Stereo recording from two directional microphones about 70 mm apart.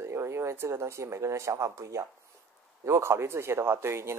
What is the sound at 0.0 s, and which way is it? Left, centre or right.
Speech, right.